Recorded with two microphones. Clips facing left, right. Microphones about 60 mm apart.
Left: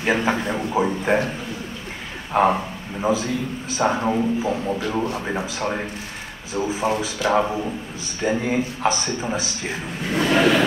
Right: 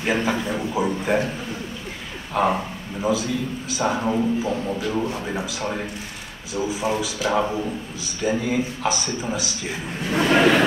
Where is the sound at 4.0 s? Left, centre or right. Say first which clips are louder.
Left 1 dB; centre.